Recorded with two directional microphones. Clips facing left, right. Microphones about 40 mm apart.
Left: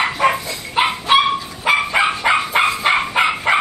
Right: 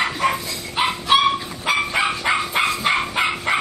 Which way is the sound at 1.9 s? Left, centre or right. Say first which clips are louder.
Left 4 dB; left.